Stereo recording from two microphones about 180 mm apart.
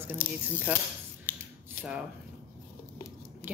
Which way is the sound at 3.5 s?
10° right (ahead or behind).